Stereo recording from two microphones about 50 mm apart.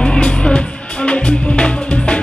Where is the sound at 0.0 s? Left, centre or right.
Centre.